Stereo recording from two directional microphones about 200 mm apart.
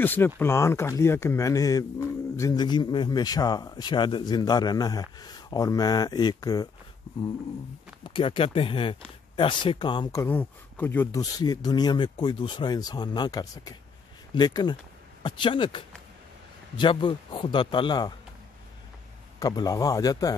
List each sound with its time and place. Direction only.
0.0 s speech: 10° left (ahead or behind)
8.0 s speech: 25° left (ahead or behind)
19.4 s speech: 20° left (ahead or behind)